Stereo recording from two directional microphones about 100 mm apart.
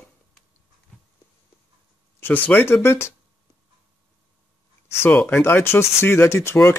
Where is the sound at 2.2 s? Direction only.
15° left (ahead or behind).